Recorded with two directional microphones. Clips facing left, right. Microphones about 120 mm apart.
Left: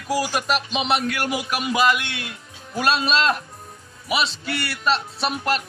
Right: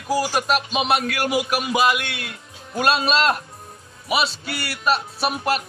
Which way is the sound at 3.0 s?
5° right (ahead or behind).